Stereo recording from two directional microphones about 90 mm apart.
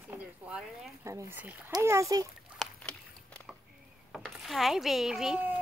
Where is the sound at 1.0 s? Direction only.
35° right (ahead or behind).